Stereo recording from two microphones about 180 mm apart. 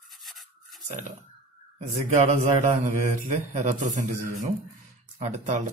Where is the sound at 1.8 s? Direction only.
40° right (ahead or behind).